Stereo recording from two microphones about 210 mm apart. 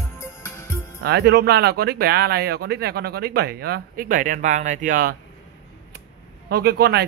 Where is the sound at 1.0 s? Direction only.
50° right (ahead or behind).